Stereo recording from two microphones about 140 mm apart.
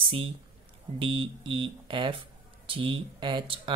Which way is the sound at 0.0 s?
40° right (ahead or behind).